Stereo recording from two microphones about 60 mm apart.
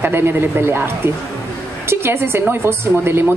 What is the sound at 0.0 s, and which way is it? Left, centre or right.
A woman's voice, right.